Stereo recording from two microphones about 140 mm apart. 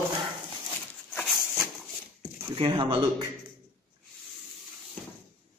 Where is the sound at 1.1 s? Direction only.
10° left (ahead or behind).